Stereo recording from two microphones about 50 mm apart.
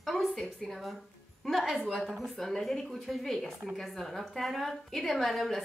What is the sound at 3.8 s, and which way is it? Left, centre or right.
A woman's voice, centre.